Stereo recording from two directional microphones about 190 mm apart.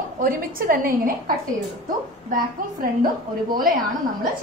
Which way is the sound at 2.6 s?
45° right (ahead or behind).